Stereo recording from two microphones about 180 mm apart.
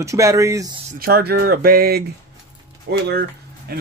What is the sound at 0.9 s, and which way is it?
Speech, 55° right (ahead or behind).